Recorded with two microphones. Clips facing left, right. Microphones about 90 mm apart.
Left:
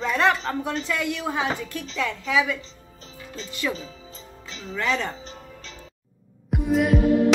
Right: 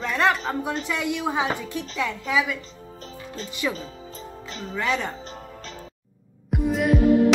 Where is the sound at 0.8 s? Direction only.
15° right (ahead or behind).